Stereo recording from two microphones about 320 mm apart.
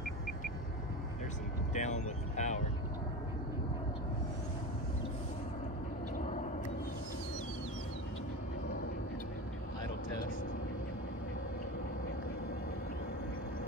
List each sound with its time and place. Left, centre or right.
1.7 s vehicle: left